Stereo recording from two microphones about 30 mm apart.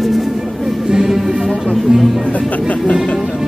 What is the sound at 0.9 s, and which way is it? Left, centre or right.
Music, centre.